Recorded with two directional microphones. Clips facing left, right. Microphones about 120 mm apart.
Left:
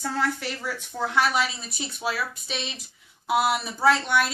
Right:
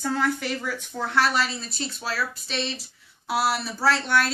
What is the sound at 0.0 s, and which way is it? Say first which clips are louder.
A woman's voice: right 2 dB; centre (ahead or behind).